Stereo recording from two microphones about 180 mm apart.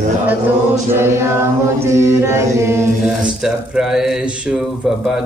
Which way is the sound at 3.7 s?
5° right (ahead or behind).